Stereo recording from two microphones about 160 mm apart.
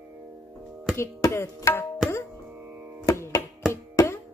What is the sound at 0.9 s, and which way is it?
Speech, 20° left (ahead or behind).